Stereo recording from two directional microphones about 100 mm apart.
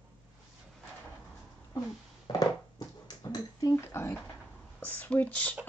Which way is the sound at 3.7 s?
25° left (ahead or behind).